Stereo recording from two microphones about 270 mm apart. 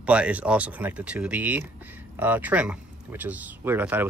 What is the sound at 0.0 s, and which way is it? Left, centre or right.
Speech, centre.